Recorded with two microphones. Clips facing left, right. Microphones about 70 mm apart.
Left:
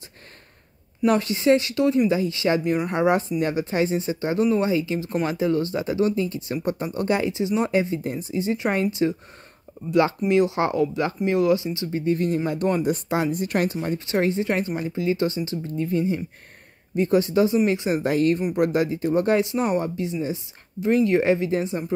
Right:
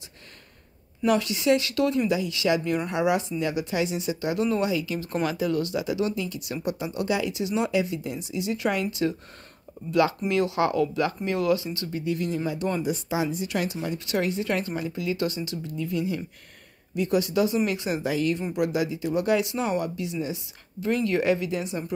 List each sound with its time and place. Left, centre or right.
1.0 s speech: left
12.0 s speech: left
12.8 s speech: left
13.9 s speech: left
18.0 s speech: left